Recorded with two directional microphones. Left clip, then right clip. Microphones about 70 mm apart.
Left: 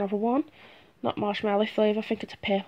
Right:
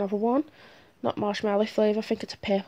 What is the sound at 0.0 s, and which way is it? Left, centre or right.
Speech, centre.